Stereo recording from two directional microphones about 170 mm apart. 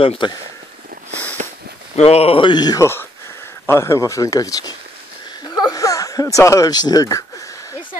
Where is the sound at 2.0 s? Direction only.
35° left (ahead or behind); by 4.7 s 20° left (ahead or behind).